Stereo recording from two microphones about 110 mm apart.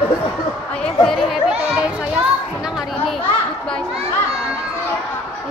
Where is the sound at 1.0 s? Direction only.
5° left (ahead or behind).